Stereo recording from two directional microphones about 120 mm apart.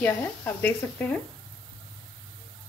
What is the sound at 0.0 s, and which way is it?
Speech, 15° left (ahead or behind).